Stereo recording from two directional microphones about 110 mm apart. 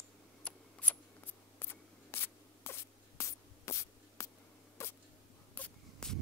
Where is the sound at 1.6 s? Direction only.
20° left (ahead or behind).